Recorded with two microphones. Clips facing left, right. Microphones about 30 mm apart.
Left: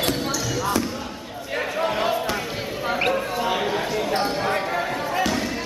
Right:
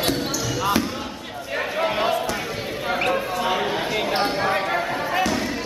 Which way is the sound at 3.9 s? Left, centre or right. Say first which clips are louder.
Right 1 dB; right.